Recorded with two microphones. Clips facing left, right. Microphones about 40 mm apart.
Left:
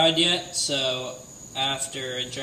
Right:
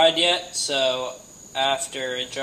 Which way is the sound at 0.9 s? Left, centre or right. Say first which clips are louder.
Right 4 dB; right.